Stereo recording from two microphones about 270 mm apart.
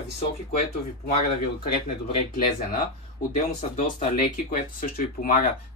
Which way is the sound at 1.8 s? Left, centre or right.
Left.